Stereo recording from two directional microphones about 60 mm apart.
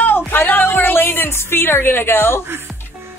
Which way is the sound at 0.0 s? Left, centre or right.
Left.